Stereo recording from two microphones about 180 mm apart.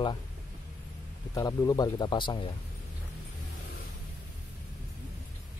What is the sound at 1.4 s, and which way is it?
Speech, 20° left (ahead or behind).